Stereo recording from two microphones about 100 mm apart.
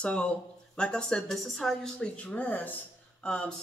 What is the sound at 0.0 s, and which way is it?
Speech, 10° left (ahead or behind).